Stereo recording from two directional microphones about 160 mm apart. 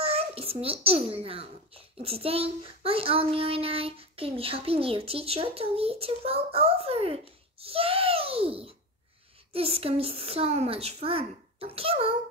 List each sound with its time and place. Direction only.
0.0 s a child's voice: 40° right (ahead or behind)